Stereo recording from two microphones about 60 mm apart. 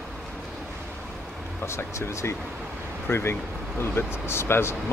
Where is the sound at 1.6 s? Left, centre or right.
Left.